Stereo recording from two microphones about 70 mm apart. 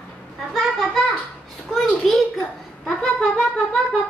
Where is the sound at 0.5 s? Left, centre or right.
Centre.